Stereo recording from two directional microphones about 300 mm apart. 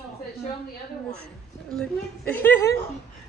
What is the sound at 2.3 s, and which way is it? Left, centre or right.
Speech, centre.